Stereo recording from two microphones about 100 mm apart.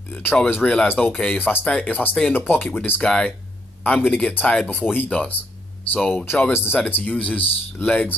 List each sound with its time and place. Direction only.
0.1 s speech: 20° left (ahead or behind)